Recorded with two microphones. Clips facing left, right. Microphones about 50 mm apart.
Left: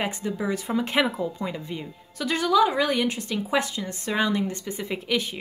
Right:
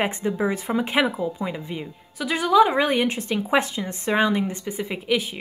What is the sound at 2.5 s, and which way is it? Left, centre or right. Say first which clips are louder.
A woman's voice: right 4 dB; right.